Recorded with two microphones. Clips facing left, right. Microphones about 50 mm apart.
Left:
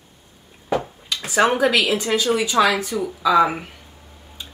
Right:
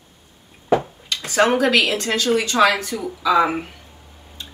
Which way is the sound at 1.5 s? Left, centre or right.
Centre.